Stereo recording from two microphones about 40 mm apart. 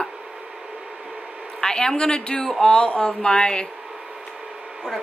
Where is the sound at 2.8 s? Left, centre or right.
Left.